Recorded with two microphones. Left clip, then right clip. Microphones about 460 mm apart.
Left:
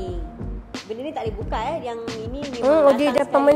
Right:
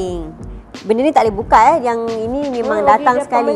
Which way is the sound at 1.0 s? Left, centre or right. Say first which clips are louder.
Right 16 dB; right.